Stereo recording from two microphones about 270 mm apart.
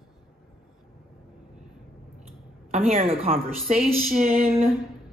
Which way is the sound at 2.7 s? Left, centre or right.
Right.